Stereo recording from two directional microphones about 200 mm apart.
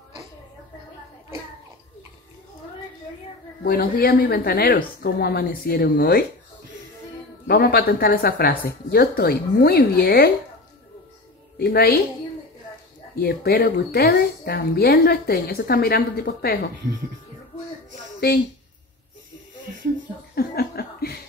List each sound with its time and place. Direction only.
3.6 s speech: 45° left (ahead or behind)
7.4 s speech: 50° left (ahead or behind)
11.5 s speech: 50° left (ahead or behind)
13.2 s speech: 50° left (ahead or behind)
18.2 s speech: 50° left (ahead or behind)
20.3 s laughter: 50° left (ahead or behind)